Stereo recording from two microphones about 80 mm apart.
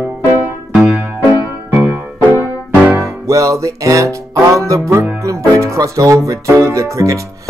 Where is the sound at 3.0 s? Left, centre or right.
Right.